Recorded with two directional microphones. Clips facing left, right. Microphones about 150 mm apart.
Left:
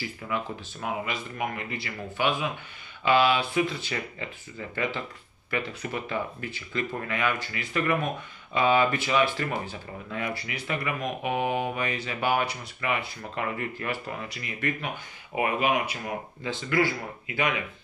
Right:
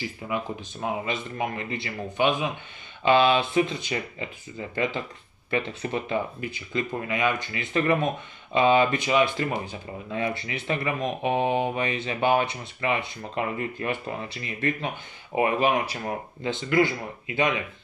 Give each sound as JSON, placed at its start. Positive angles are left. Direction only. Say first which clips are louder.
{"t": 0.0, "sound": "speech", "louder": "right 2 dB", "side_deg": -25}